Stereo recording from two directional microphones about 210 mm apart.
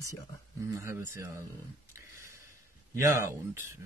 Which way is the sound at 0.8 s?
10° right (ahead or behind).